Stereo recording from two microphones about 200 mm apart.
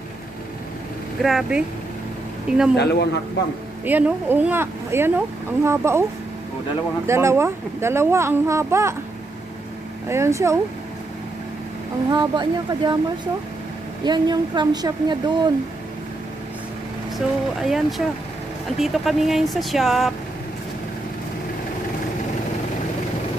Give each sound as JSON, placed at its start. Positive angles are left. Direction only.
{"t": 1.2, "sound": "speech", "side_deg": 0}
{"t": 2.7, "sound": "speech", "side_deg": 55}
{"t": 3.8, "sound": "speech", "side_deg": -10}
{"t": 7.1, "sound": "speech", "side_deg": -15}
{"t": 10.0, "sound": "speech", "side_deg": -15}
{"t": 12.1, "sound": "a woman's voice", "side_deg": -20}
{"t": 17.6, "sound": "speech", "side_deg": 0}